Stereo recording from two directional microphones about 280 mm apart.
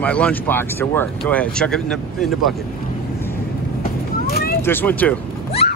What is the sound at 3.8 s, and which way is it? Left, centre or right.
Vehicle, left.